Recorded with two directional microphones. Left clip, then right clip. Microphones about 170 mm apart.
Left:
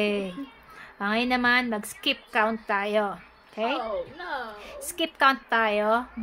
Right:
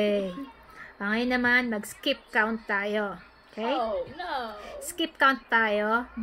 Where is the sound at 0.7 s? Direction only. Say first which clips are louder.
Left 2 dB; 15° left (ahead or behind).